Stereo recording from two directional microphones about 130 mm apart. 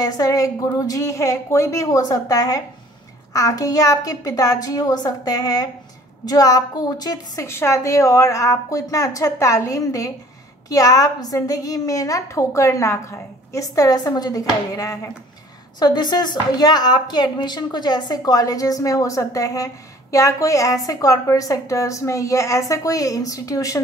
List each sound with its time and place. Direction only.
0.0 s a woman's voice: 25° left (ahead or behind)